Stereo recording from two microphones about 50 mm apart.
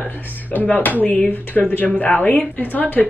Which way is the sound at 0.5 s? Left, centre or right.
Left.